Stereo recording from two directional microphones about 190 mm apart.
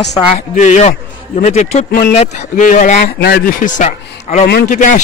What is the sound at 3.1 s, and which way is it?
Speech, 55° left (ahead or behind).